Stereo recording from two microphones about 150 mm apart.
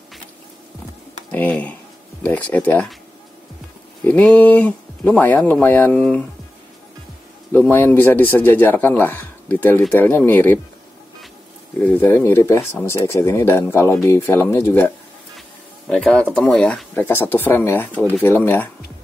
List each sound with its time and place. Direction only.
1.3 s speech: 10° left (ahead or behind)
4.0 s speech: 5° left (ahead or behind)
7.5 s speech: 10° left (ahead or behind)
11.8 s speech: 10° left (ahead or behind)
15.9 s speech: 5° left (ahead or behind)